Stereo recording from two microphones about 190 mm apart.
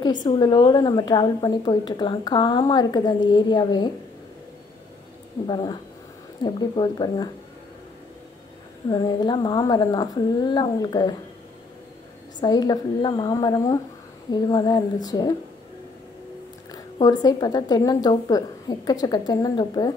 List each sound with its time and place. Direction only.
0.0 s a woman's voice: 25° left (ahead or behind)
5.5 s a woman's voice: 20° left (ahead or behind)
8.8 s a woman's voice: 20° left (ahead or behind)
12.4 s a woman's voice: 20° left (ahead or behind)
16.7 s a woman's voice: 20° left (ahead or behind)